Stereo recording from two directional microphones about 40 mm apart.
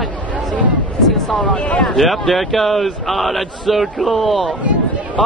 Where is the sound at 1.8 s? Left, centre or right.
Centre.